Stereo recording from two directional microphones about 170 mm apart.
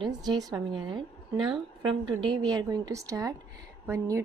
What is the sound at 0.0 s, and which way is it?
A woman's voice, 25° right (ahead or behind).